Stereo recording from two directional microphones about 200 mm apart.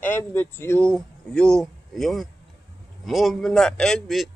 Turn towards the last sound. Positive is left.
turn(degrees=0)  # may be behind; listen again after turning